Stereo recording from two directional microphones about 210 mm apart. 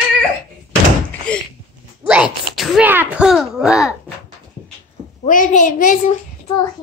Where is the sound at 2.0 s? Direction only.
5° right (ahead or behind).